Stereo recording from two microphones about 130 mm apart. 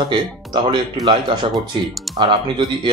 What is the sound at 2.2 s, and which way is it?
Speech, 40° right (ahead or behind).